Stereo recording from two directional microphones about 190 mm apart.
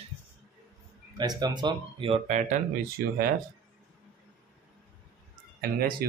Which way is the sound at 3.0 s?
55° right (ahead or behind).